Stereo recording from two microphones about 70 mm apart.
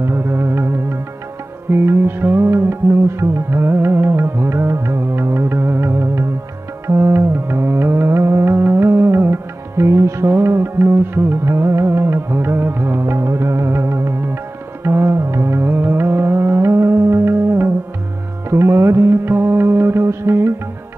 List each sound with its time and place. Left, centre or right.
0.0 s music: right